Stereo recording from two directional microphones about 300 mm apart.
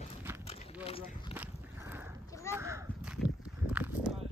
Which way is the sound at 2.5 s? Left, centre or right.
Centre.